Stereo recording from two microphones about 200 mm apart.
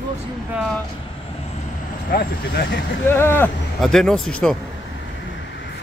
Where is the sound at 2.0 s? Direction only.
50° left (ahead or behind).